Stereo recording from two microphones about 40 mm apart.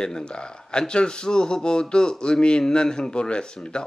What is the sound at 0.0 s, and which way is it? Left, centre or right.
Speech, left.